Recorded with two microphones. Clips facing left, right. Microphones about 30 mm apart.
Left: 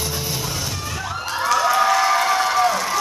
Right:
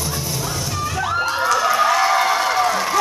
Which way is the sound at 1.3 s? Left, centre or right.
Centre.